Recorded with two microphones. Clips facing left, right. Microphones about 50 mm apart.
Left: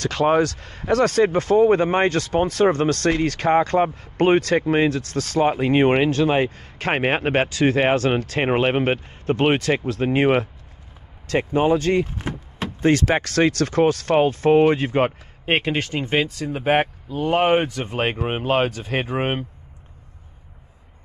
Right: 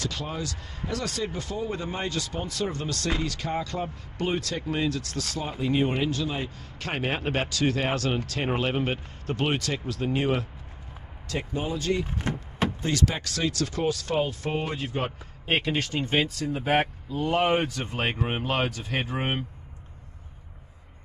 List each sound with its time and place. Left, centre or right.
0.0 s speech: left
12.2 s door: centre
12.8 s speech: left
15.4 s speech: left